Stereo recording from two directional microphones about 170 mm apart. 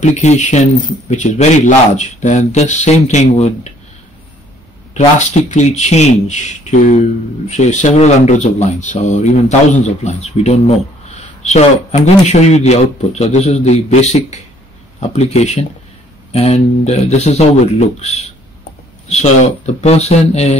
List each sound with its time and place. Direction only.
0.0 s a man's voice: 45° left (ahead or behind)
4.9 s a man's voice: 45° left (ahead or behind)